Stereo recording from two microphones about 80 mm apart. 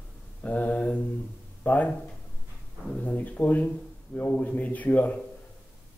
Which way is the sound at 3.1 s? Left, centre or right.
Left.